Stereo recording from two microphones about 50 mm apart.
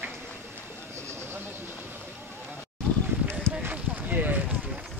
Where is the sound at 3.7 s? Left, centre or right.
Right.